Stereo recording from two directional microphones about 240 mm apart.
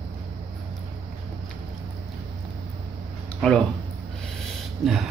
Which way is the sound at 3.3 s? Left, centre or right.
Centre.